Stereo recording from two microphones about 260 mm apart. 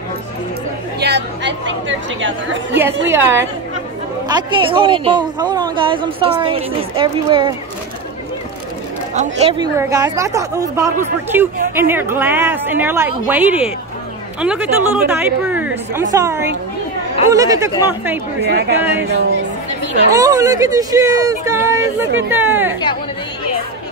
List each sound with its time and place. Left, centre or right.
0.9 s speech: right
3.1 s a woman's voice: centre
9.1 s a woman's voice: right; by 18.2 s centre
18.5 s speech: right
20.1 s a woman's voice: centre